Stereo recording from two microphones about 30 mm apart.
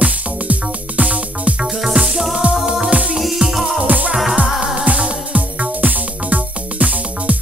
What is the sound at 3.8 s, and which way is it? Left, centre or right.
Music, right.